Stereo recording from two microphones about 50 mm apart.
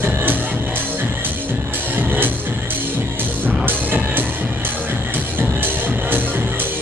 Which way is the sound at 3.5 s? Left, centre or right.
Right.